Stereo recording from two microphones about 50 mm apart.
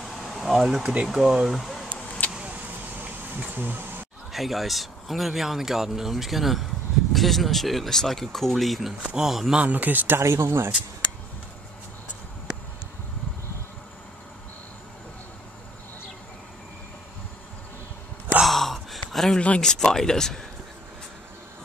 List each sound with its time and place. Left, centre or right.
0.0 s a sound: centre
0.9 s speech: centre
2.4 s a sound: right
4.3 s speech: centre
9.0 s a man's voice: centre
9.3 s speech: centre
9.6 s speech: right
10.2 s speech: right
18.4 s gasp: centre
19.1 s a sound: centre
19.6 s speech: centre